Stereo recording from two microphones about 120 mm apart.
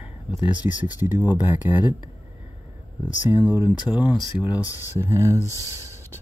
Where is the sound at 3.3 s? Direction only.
15° right (ahead or behind).